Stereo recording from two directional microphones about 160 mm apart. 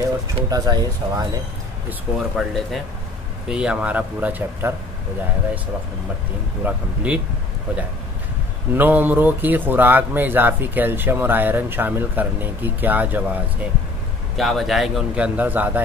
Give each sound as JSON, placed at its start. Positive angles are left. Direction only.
{"t": 0.5, "sound": "speech", "side_deg": -25}
{"t": 1.9, "sound": "speech", "side_deg": -5}
{"t": 6.6, "sound": "speech", "side_deg": -10}
{"t": 8.7, "sound": "speech", "side_deg": -10}
{"t": 14.3, "sound": "speech", "side_deg": 0}